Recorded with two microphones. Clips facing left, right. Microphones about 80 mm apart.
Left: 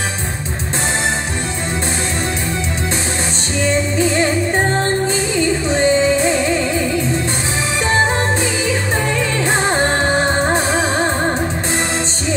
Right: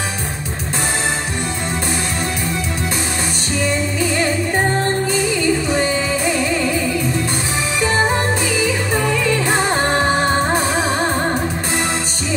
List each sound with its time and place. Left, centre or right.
5.7 s music: left